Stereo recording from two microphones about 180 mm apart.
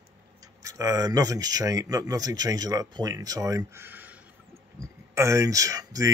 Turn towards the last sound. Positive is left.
turn(degrees=-20)  # may be behind; listen again after turning